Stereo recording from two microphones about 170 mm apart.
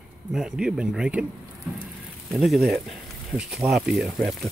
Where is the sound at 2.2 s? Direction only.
Centre (ahead or behind).